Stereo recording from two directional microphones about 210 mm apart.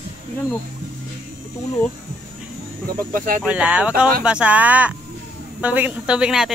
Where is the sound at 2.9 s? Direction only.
40° right (ahead or behind).